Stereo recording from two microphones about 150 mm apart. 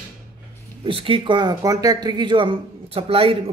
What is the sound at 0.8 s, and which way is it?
Speech, 35° right (ahead or behind).